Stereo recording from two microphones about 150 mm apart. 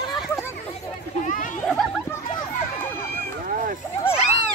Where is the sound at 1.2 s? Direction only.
60° left (ahead or behind).